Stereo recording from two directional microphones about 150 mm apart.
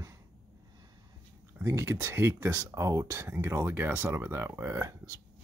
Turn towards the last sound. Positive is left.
turn(degrees=-25)  # may be behind; listen again after turning